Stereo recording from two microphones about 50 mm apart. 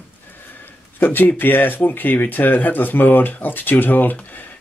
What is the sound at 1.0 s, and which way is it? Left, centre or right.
Speech, left.